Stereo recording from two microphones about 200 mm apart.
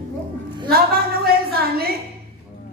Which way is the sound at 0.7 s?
50° right (ahead or behind).